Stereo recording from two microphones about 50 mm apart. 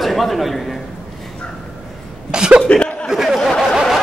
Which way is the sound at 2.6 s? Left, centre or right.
Centre.